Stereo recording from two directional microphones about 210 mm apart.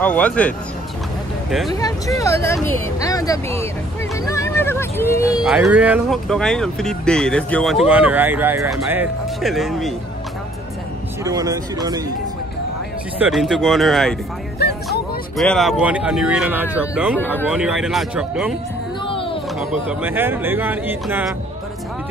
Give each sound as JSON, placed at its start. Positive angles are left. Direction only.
{"t": 0.0, "sound": "speech", "side_deg": 5}
{"t": 1.8, "sound": "speech", "side_deg": 15}
{"t": 4.3, "sound": "a sound", "side_deg": 15}
{"t": 5.4, "sound": "speech", "side_deg": -5}
{"t": 11.2, "sound": "speech", "side_deg": -15}
{"t": 13.2, "sound": "speech", "side_deg": 0}
{"t": 19.6, "sound": "speech", "side_deg": -5}